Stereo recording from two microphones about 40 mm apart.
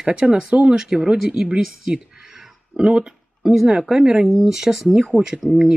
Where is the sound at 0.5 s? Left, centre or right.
Right.